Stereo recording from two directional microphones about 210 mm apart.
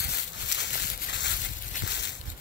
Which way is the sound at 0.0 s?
55° left (ahead or behind).